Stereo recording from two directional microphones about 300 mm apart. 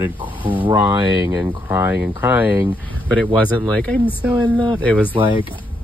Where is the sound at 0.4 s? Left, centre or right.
Centre.